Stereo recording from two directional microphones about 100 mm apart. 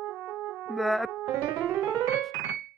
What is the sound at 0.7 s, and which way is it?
Music, centre (ahead or behind).